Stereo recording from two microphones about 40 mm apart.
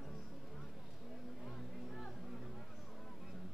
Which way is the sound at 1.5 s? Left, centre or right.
Centre.